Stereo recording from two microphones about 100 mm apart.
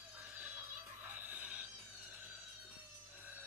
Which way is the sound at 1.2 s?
15° right (ahead or behind).